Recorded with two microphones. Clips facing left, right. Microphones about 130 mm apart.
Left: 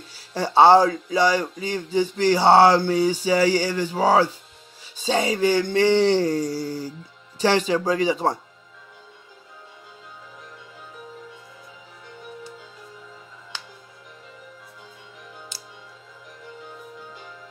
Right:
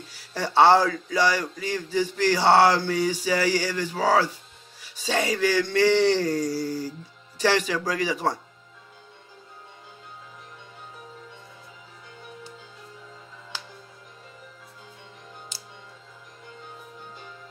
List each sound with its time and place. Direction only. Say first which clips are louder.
0.3 s speech: left 3 dB; 25° left (ahead or behind)